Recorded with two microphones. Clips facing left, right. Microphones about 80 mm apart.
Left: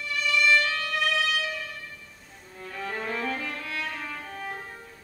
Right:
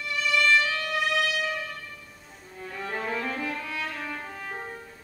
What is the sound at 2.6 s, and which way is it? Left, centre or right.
Music, centre.